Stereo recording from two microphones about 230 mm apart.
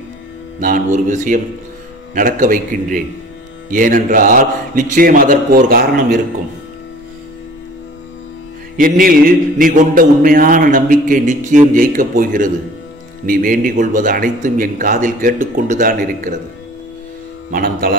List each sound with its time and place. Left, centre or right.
0.6 s mantra: right
8.7 s mantra: right
17.5 s mantra: right